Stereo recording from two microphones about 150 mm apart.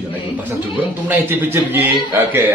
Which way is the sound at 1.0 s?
15° right (ahead or behind).